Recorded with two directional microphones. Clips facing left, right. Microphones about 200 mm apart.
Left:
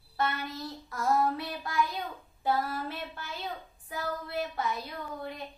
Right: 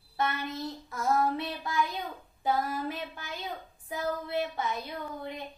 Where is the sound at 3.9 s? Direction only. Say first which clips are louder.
Right 3 dB; 20° right (ahead or behind).